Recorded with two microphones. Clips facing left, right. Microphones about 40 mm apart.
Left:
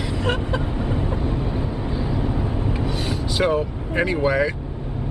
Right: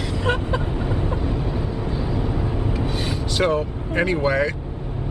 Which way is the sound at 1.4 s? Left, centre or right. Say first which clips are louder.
Even; centre.